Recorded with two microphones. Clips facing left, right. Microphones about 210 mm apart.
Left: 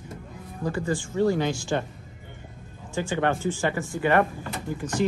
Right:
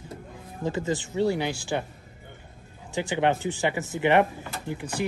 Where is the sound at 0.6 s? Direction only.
20° right (ahead or behind).